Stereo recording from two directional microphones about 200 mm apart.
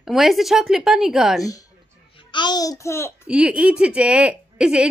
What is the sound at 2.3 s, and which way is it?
Laughter, 20° left (ahead or behind).